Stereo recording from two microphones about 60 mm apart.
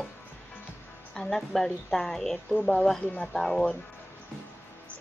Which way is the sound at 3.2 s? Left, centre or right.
Centre.